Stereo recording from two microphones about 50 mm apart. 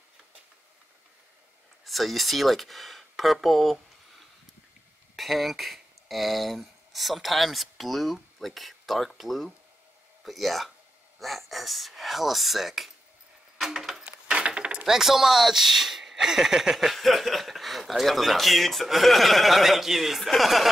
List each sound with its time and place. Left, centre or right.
1.9 s speech: centre
5.1 s speech: centre
13.7 s a sound: centre
14.3 s keys jangling: right
15.0 s speech: centre